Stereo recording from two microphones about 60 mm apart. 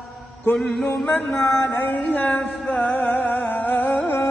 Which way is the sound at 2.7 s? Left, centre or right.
Left.